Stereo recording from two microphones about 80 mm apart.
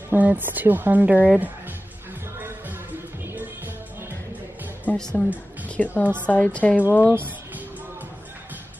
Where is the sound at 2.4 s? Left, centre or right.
Right.